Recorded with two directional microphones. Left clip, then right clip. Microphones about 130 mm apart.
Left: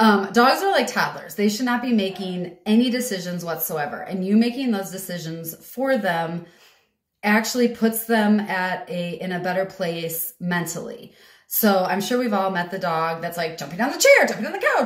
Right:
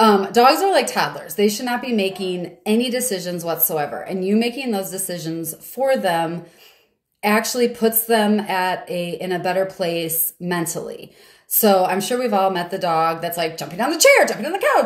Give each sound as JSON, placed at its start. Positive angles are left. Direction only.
{"t": 0.2, "sound": "speech", "side_deg": -25}